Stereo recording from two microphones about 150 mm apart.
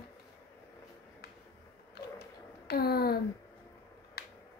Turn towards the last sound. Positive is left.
turn(degrees=90)